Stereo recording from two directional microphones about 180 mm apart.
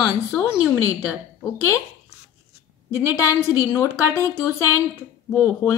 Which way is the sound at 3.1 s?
15° left (ahead or behind).